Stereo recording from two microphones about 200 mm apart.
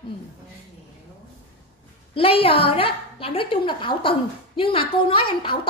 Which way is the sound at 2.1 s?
30° left (ahead or behind).